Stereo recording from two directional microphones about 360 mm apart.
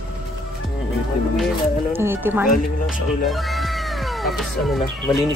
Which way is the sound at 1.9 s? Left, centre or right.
Centre.